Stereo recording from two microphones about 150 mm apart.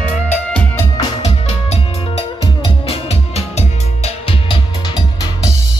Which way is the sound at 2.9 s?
45° left (ahead or behind).